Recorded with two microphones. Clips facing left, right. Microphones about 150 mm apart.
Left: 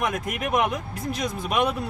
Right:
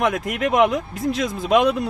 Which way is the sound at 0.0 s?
90° right.